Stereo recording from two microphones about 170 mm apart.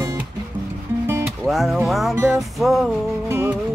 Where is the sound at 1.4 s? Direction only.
Centre (ahead or behind).